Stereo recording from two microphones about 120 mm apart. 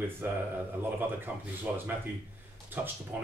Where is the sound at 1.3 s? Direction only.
5° right (ahead or behind).